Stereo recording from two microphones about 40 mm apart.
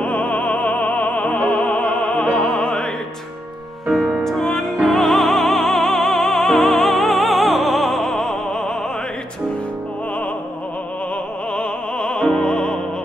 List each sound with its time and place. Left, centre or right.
0.0 s music: left
4.2 s music: centre
11.5 s music: left